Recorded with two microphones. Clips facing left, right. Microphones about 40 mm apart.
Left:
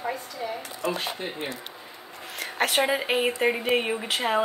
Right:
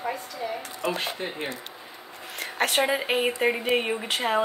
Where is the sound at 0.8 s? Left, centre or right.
Right.